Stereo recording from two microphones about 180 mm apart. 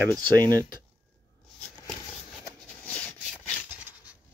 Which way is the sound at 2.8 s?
10° left (ahead or behind).